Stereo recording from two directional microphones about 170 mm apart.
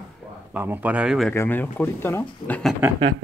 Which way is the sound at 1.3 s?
10° left (ahead or behind).